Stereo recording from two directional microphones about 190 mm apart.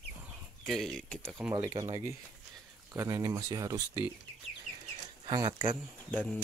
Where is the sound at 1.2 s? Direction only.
15° right (ahead or behind).